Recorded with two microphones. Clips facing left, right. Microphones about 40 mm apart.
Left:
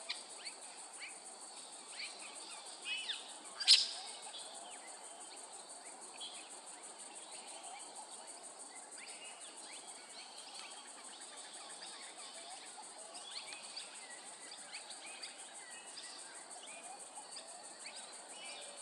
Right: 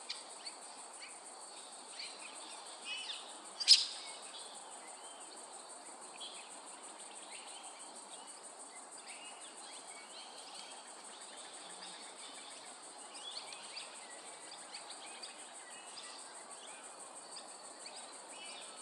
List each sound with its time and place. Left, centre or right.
2.9 s bird: left